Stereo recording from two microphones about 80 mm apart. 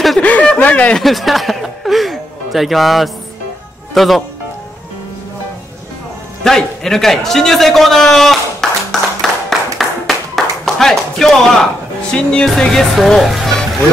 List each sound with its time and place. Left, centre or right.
0.2 s a sound: centre
0.9 s music: centre
3.9 s speech: centre
6.4 s a man's voice: centre
8.9 s clapping: centre
12.4 s speech: centre